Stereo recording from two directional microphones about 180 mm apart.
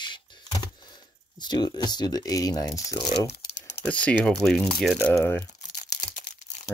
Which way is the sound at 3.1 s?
30° left (ahead or behind).